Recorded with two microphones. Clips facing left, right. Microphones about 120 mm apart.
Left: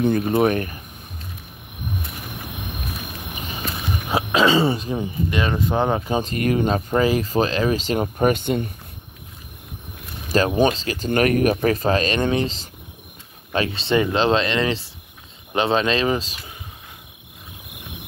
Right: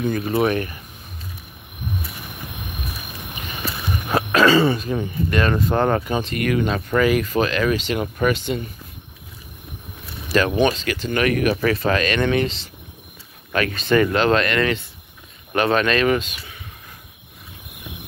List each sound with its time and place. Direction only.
0.4 s speech: 35° left (ahead or behind)
4.1 s throat clearing: 15° left (ahead or behind)
4.6 s speech: 25° left (ahead or behind)
6.2 s speech: 35° left (ahead or behind)
10.2 s a sound: 40° left (ahead or behind)
10.5 s speech: 35° left (ahead or behind)
11.1 s speech: 45° left (ahead or behind)